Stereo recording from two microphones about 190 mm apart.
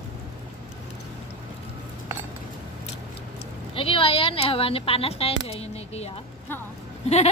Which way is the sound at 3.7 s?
30° left (ahead or behind).